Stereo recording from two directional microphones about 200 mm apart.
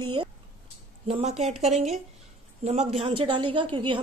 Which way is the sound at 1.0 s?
30° right (ahead or behind).